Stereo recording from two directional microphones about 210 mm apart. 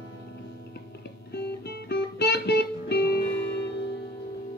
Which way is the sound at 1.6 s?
50° left (ahead or behind).